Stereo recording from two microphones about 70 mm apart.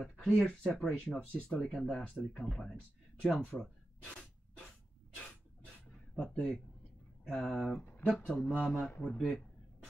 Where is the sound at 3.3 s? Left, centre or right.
Left.